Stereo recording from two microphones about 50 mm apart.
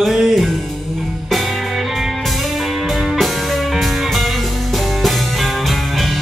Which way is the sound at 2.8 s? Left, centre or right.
Centre.